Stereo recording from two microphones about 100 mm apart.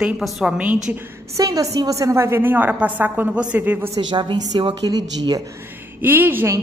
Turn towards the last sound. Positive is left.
turn(degrees=-20)  # may be behind; listen again after turning